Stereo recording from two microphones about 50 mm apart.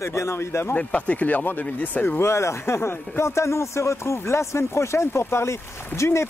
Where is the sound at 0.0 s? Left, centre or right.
Left.